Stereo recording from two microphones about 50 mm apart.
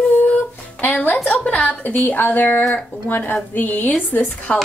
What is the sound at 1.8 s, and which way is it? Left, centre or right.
Speech, left.